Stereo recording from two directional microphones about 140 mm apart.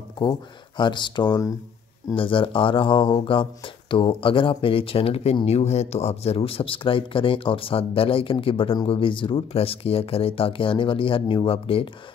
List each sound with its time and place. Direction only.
0.2 s speech: 35° left (ahead or behind)